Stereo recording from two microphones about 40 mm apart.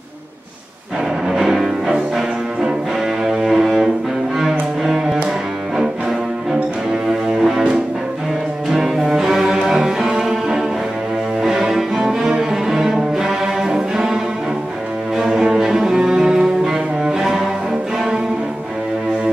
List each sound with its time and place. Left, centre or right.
1.3 s music: centre
3.3 s cello: centre
4.4 s music: centre
7.1 s music: centre
8.7 s cello: centre
15.1 s cello: centre